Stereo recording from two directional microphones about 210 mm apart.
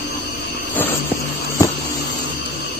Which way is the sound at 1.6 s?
15° left (ahead or behind).